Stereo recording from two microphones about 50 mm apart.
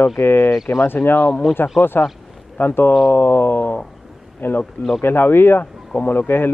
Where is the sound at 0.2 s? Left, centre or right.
Left.